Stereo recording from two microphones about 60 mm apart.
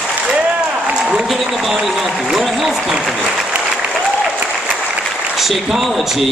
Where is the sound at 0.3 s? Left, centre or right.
Centre.